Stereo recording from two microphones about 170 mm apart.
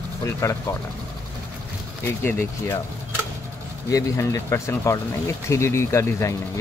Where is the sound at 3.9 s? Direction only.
20° left (ahead or behind).